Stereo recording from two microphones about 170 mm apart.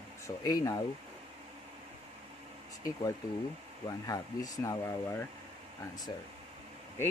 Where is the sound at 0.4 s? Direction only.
20° left (ahead or behind).